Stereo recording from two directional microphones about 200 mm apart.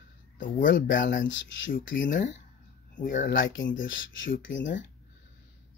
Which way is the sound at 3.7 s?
70° left (ahead or behind).